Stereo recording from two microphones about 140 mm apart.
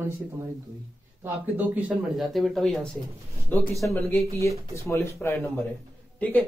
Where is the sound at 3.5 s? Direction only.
15° left (ahead or behind).